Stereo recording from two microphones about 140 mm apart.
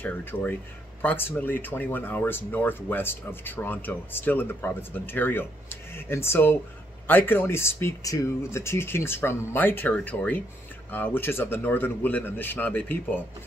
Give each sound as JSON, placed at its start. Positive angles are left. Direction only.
{"t": 0.0, "sound": "speech", "side_deg": 15}